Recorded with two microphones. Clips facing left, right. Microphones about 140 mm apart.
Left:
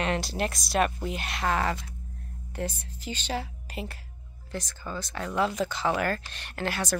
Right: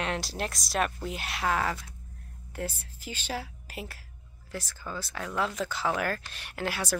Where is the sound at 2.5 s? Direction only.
5° right (ahead or behind).